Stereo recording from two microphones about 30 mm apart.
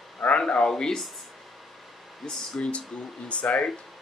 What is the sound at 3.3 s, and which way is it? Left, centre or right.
Speech, left.